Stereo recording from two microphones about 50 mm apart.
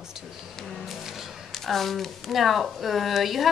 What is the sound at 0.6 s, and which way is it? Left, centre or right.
A woman's voice, centre.